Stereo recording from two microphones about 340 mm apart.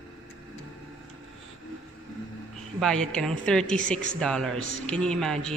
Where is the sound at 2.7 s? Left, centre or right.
Centre.